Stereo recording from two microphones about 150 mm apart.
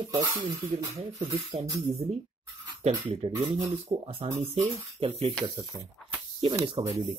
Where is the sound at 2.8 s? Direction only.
40° right (ahead or behind).